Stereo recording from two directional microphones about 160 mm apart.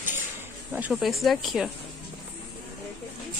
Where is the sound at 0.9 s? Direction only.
Centre (ahead or behind).